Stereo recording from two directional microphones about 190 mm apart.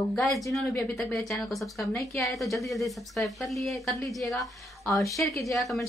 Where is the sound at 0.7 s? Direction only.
15° left (ahead or behind).